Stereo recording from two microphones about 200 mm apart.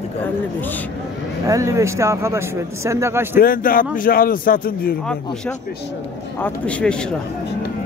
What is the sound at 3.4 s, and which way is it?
A man's voice, 45° left (ahead or behind).